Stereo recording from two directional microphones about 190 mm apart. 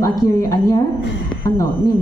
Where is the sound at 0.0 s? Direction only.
20° left (ahead or behind).